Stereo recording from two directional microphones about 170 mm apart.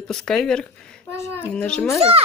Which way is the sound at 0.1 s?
5° left (ahead or behind).